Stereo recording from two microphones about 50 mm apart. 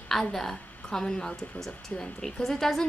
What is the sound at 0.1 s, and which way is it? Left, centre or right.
A woman's voice, centre.